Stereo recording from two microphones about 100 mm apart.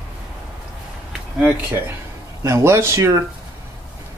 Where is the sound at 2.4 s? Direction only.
30° right (ahead or behind).